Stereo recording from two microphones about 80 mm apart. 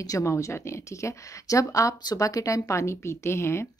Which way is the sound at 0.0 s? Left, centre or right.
Left.